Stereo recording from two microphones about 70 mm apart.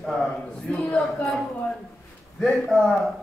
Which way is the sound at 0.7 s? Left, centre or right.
Left.